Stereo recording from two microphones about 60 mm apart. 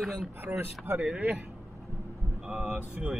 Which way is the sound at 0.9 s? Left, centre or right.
Centre.